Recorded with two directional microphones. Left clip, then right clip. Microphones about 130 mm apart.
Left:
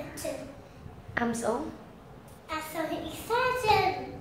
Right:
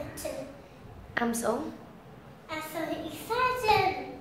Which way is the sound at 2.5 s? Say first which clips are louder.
Left 2 dB; 10° left (ahead or behind).